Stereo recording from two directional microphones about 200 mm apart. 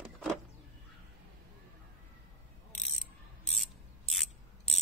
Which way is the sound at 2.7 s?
Centre (ahead or behind).